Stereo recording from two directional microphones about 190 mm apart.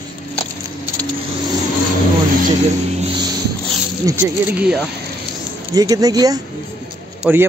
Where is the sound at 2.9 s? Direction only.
30° right (ahead or behind).